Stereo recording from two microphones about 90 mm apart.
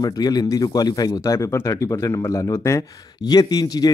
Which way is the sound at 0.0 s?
45° left (ahead or behind).